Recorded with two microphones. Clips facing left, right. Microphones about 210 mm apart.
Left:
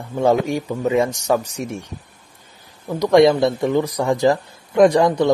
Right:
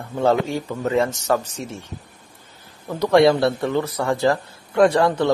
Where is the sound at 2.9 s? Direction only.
15° left (ahead or behind).